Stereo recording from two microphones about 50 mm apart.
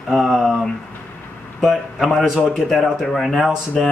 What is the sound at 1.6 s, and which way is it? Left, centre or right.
Speech, centre.